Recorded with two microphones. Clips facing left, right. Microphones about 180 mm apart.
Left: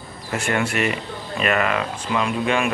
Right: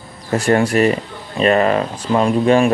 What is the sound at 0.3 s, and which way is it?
Speech, 35° right (ahead or behind).